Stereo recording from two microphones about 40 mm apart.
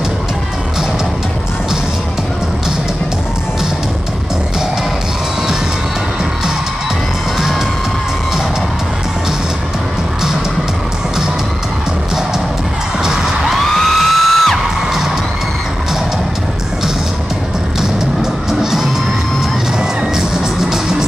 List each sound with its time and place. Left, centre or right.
7.3 s music: centre
13.0 s music: centre
13.7 s music: centre
17.7 s music: centre